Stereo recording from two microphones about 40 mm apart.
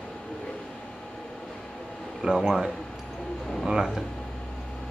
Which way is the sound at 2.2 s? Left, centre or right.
Centre.